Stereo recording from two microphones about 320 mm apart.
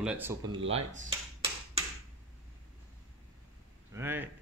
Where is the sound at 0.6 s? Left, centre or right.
Right.